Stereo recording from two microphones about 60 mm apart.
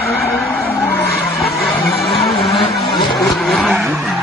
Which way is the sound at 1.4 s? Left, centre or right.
Centre.